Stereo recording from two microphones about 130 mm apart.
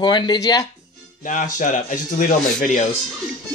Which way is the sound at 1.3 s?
80° left.